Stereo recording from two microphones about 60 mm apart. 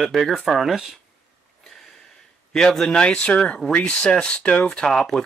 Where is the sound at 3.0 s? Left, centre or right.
Centre.